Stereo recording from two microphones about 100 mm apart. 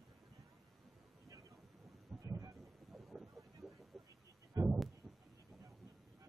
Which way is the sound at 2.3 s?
30° right (ahead or behind).